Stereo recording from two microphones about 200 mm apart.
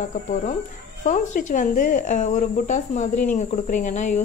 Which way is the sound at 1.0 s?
40° left (ahead or behind).